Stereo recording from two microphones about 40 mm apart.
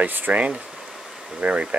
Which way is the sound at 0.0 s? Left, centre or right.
Right.